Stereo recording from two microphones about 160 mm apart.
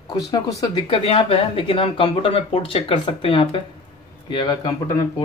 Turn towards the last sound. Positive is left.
turn(degrees=25)  # may be behind; listen again after turning